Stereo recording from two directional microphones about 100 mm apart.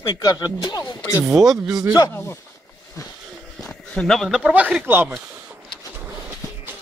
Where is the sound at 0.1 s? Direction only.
45° left (ahead or behind).